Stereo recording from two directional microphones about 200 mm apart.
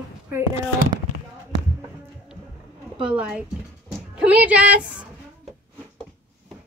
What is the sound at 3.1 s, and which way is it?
Speech, 5° right (ahead or behind).